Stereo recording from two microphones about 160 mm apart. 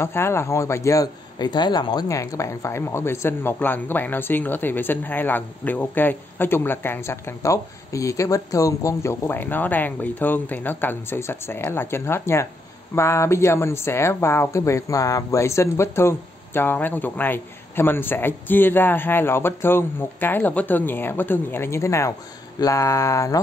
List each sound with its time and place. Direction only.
0.0 s speech: 15° left (ahead or behind)